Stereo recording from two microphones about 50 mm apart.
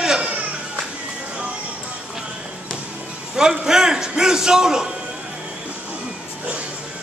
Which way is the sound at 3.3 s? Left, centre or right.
Centre.